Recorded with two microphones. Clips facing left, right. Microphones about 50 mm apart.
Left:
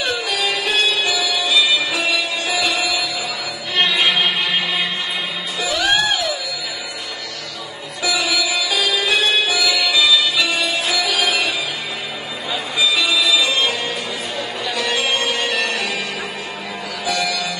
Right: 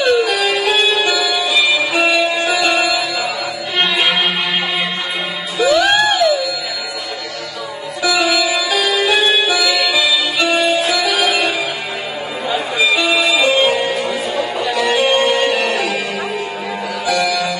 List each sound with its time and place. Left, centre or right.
0.0 s music: centre
2.0 s music: right
3.9 s music: centre
5.7 s music: centre
8.3 s music: centre
12.5 s music: centre
14.7 s music: centre
17.2 s music: right